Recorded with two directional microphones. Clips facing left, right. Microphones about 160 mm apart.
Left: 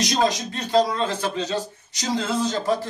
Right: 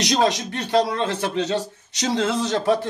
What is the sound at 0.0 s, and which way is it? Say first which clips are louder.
Speech: right 2 dB; 75° right (ahead or behind).